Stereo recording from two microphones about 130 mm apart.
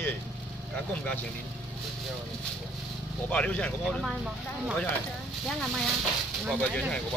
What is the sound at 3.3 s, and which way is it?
Speech, 10° left (ahead or behind).